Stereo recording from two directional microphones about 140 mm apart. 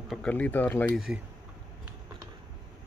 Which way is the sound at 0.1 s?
10° left (ahead or behind).